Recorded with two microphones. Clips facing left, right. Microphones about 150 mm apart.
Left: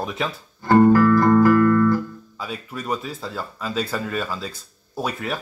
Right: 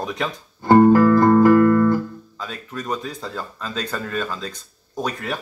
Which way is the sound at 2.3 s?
10° left (ahead or behind).